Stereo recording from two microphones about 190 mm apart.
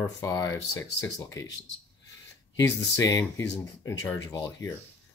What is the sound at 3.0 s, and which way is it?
Speech, 15° left (ahead or behind).